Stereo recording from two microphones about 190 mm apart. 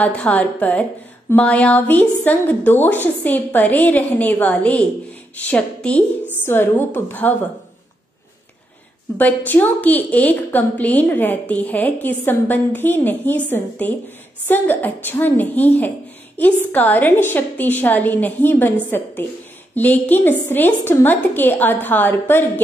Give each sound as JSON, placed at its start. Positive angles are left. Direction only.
{"t": 0.0, "sound": "a woman's voice", "side_deg": 5}
{"t": 9.2, "sound": "a woman's voice", "side_deg": 10}